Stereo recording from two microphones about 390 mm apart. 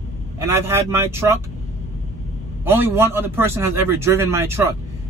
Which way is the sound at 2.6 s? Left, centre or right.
Centre.